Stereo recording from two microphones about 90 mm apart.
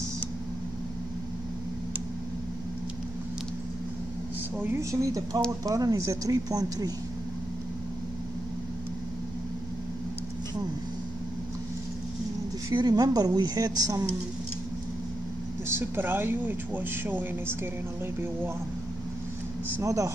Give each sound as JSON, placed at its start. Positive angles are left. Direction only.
{"t": 4.6, "sound": "speech", "side_deg": -25}
{"t": 12.7, "sound": "speech", "side_deg": -45}
{"t": 15.7, "sound": "speech", "side_deg": -25}
{"t": 19.8, "sound": "speech", "side_deg": -35}